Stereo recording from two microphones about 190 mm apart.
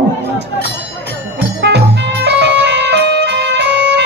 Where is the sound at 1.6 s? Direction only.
65° right (ahead or behind).